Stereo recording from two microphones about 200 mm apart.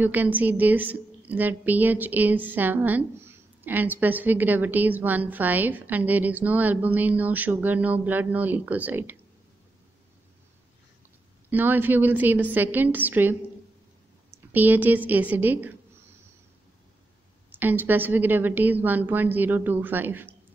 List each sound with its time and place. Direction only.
0.0 s a woman's voice: 10° right (ahead or behind)
11.5 s a woman's voice: 10° right (ahead or behind)
17.5 s a woman's voice: 10° right (ahead or behind)